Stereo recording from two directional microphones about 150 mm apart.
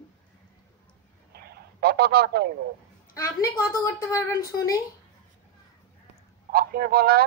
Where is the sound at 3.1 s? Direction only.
20° left (ahead or behind).